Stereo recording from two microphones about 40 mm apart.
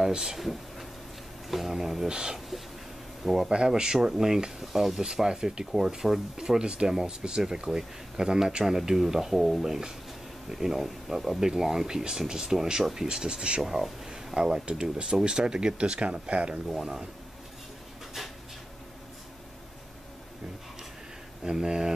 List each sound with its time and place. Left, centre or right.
0.0 s speech: centre
3.5 s speech: centre
13.6 s speech: centre; by 16.6 s right
16.6 s speech: centre
21.5 s speech: centre